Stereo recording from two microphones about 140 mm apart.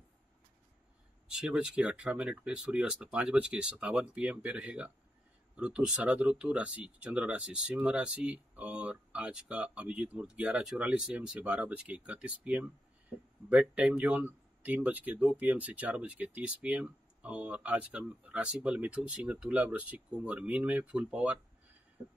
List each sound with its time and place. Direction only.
1.3 s speech: 5° right (ahead or behind)
22.0 s music: 25° right (ahead or behind)